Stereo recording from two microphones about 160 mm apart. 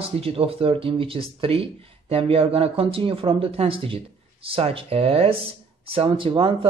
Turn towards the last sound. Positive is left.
turn(degrees=-30)  # may be behind; listen again after turning